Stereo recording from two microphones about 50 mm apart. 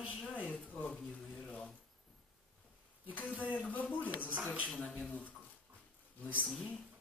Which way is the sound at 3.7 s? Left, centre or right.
Left.